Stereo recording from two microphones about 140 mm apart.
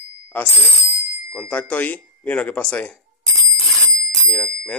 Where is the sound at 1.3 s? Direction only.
10° left (ahead or behind).